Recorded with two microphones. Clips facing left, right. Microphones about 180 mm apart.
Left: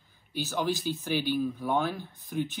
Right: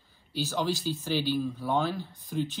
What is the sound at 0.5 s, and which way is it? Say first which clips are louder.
Speech: left 1 dB; 15° left (ahead or behind).